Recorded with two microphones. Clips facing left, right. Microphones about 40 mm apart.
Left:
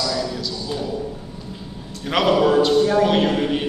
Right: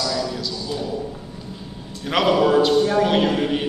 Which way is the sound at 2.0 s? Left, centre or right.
Centre.